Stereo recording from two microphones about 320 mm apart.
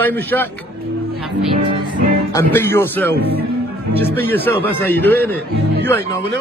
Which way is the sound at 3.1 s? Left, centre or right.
Right.